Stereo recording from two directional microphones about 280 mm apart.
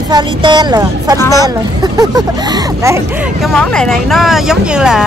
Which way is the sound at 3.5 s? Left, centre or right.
Centre.